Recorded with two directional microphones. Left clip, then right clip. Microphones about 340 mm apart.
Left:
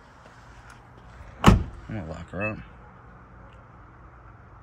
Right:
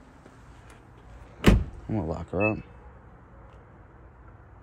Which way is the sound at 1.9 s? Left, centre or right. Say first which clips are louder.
Right 6 dB; centre.